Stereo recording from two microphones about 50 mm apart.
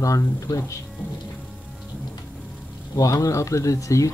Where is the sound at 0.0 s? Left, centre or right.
Left.